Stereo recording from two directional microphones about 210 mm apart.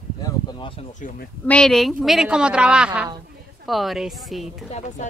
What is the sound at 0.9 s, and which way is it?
Speech, 35° left (ahead or behind).